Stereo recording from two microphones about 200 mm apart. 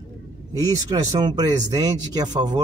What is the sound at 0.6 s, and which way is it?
Speech, 20° right (ahead or behind).